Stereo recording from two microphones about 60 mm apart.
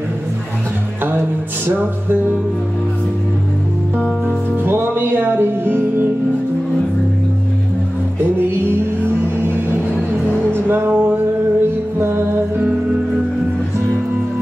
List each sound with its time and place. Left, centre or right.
1.7 s music: right
4.6 s music: right
8.6 s music: right
12.0 s music: right